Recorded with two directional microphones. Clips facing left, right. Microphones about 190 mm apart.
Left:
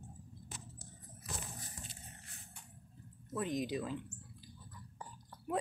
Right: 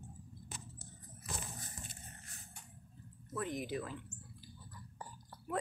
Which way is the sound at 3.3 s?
15° left (ahead or behind).